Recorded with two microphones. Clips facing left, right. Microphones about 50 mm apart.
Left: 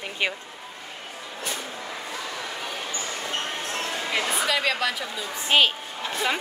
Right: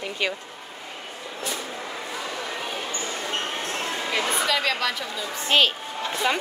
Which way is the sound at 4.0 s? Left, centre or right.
Centre.